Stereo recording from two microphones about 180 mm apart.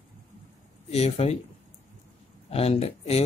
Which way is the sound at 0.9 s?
35° left (ahead or behind).